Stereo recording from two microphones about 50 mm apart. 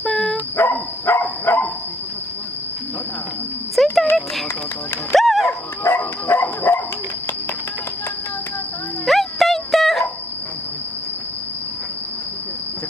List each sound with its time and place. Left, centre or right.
0.0 s dog: left
0.6 s dog: left
3.7 s a sound: centre
5.1 s music: centre
5.9 s dog: left
9.0 s music: centre